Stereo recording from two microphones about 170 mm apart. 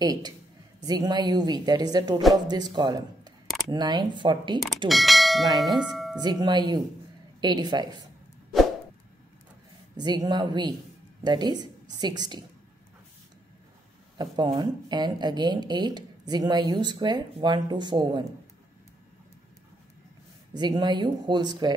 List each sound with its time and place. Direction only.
0.0 s speech: 25° right (ahead or behind)
4.8 s speech: centre (ahead or behind)
6.4 s speech: 25° right (ahead or behind)
9.9 s speech: 25° right (ahead or behind)
14.1 s speech: 25° right (ahead or behind)
20.5 s speech: 25° right (ahead or behind)